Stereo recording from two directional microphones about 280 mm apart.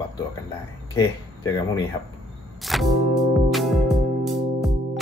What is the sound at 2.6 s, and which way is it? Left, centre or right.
Music, centre.